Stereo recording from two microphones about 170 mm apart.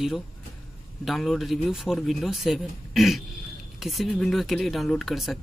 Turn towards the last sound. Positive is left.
turn(degrees=0)  # may be behind; listen again after turning